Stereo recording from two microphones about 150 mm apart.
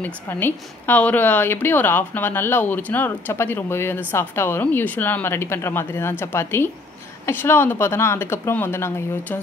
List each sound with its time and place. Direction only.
0.0 s a woman's voice: 15° left (ahead or behind)